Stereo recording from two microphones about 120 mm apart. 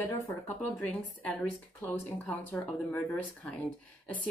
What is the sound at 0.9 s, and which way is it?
Speech, 10° left (ahead or behind).